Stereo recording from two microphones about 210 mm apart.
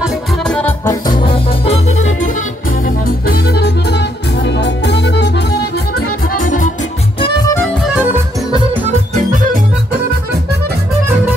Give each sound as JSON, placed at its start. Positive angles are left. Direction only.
{"t": 0.0, "sound": "music", "side_deg": 5}
{"t": 1.2, "sound": "music", "side_deg": 30}
{"t": 6.4, "sound": "music", "side_deg": 40}
{"t": 7.2, "sound": "music", "side_deg": 25}
{"t": 7.8, "sound": "music", "side_deg": -5}
{"t": 9.1, "sound": "music", "side_deg": -40}